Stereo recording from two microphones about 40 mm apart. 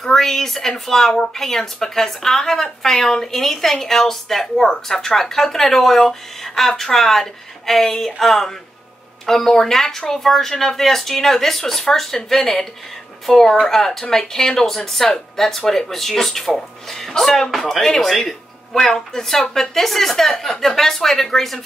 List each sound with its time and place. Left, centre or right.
0.0 s speech: centre